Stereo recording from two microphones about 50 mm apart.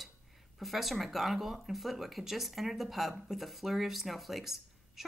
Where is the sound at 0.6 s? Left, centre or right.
Centre.